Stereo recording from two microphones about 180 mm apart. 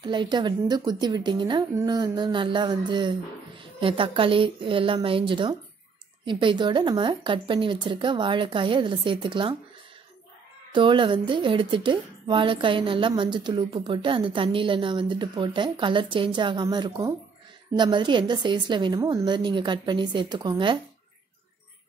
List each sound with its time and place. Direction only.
0.0 s a woman's voice: 25° right (ahead or behind)
10.7 s a woman's voice: 30° right (ahead or behind)